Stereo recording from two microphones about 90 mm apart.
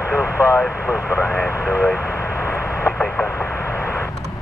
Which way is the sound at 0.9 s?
25° left (ahead or behind).